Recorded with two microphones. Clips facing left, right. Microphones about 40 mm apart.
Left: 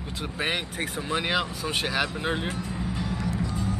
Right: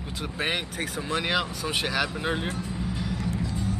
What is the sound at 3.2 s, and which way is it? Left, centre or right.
Music, left.